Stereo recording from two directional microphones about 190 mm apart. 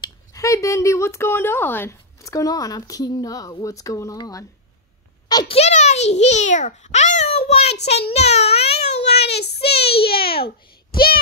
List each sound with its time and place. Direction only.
0.0 s a child's voice: 15° left (ahead or behind)
5.6 s a child's voice: 35° left (ahead or behind)
8.7 s a sound: 60° left (ahead or behind)